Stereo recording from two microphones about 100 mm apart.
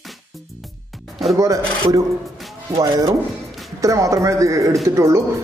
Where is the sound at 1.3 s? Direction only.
35° right (ahead or behind).